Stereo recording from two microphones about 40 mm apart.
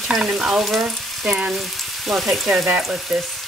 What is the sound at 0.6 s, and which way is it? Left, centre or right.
Frying, centre.